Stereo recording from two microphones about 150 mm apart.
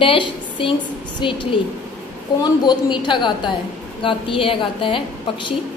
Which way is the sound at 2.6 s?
30° left (ahead or behind).